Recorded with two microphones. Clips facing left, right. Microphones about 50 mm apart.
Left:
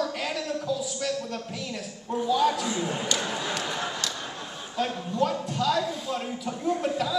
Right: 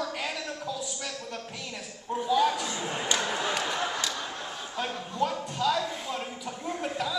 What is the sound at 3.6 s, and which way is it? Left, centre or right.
A man's voice, centre.